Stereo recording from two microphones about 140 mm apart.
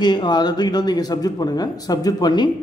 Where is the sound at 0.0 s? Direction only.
30° left (ahead or behind).